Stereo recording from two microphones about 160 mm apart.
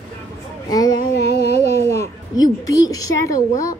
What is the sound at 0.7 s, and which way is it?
Speech, 25° left (ahead or behind).